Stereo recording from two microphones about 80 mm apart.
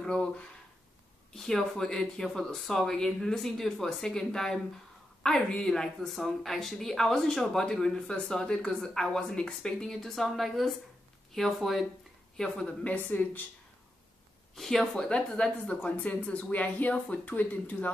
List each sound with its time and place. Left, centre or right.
0.0 s speech: centre
1.3 s a woman's voice: centre
13.1 s speech: left
14.5 s a woman's voice: centre; by 17.9 s left